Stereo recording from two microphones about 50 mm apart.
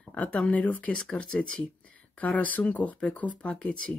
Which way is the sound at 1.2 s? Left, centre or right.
Centre.